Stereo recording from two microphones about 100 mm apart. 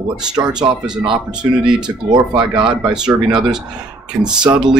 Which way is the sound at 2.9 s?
5° right (ahead or behind).